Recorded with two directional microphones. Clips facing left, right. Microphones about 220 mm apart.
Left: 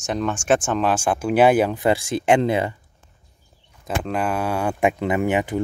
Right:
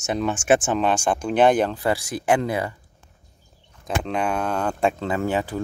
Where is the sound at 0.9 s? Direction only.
5° left (ahead or behind); by 2.7 s 20° left (ahead or behind).